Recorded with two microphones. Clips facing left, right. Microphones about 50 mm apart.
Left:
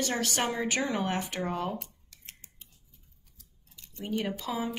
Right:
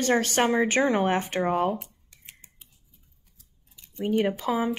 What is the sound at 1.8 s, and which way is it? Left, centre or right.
Scissors, centre.